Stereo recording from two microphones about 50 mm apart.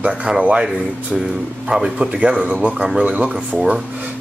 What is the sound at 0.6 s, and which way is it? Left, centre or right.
A man's voice, centre.